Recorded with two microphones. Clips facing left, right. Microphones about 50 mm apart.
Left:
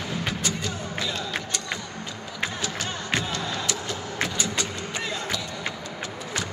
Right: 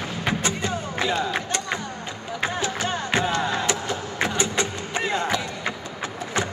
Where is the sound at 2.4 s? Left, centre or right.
Right.